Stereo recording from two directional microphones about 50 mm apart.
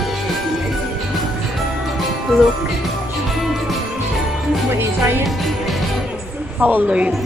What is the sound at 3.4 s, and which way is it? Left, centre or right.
Jingle bell, centre.